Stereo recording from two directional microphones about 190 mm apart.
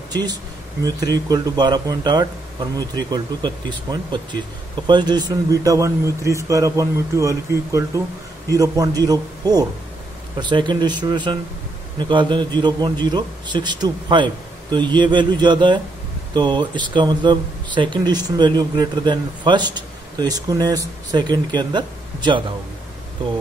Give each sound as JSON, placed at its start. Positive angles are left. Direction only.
{"t": 0.1, "sound": "speech", "side_deg": -20}